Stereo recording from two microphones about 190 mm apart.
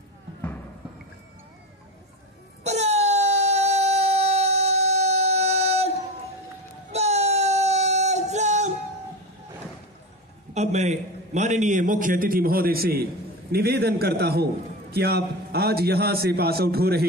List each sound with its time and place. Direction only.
2.6 s a sound: 35° right (ahead or behind)
6.9 s music: 35° right (ahead or behind)
10.5 s a man's voice: 35° right (ahead or behind); by 17.0 s 55° right (ahead or behind)